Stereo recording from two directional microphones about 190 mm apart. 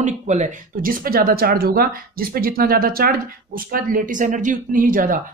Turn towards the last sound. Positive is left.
turn(degrees=-45)  # may be behind; listen again after turning